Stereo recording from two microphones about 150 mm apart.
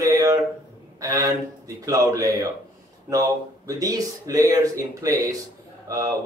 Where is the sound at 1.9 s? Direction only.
25° right (ahead or behind).